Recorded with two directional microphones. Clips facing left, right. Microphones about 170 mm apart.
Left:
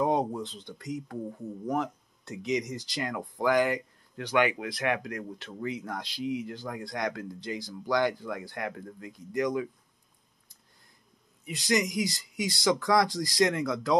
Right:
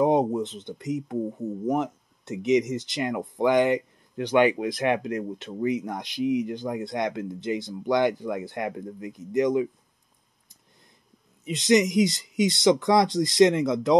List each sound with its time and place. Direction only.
0.0 s speech: 20° right (ahead or behind)
11.4 s speech: 20° right (ahead or behind)